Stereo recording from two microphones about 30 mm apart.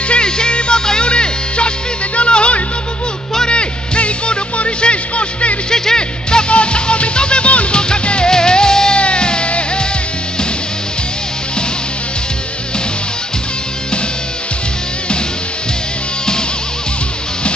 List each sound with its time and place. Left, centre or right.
0.1 s music: left
5.7 s music: left
6.5 s music: left
8.9 s music: left